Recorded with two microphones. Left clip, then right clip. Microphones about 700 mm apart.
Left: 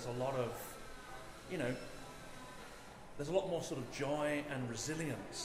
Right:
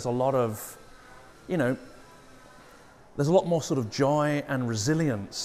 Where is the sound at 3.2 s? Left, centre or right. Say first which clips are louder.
Right 13 dB; right.